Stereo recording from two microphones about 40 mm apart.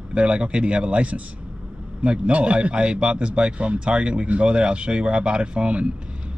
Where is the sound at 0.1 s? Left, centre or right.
Right.